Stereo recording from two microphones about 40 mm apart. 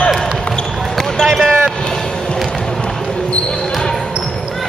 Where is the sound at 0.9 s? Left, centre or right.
Centre.